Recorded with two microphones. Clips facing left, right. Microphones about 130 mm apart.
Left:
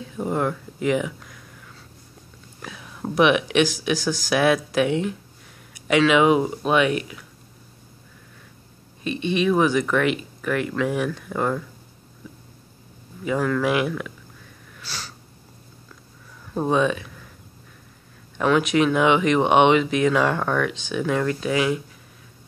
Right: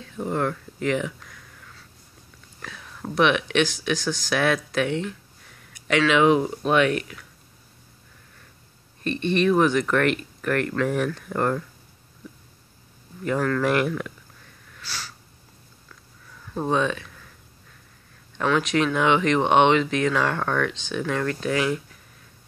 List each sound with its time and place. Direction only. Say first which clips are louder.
0.0 s speech: left 2 dB; 10° left (ahead or behind)
2.6 s speech: left 4 dB; 10° left (ahead or behind)
9.0 s speech: even; 5° left (ahead or behind)
13.2 s speech: left 1 dB; 5° left (ahead or behind)
14.8 s snort: left 1 dB; 20° left (ahead or behind)
16.5 s speech: left 3 dB; 10° left (ahead or behind)
18.4 s speech: left 3 dB; 10° left (ahead or behind)